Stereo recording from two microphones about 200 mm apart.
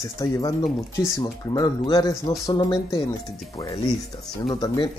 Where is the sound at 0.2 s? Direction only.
15° left (ahead or behind).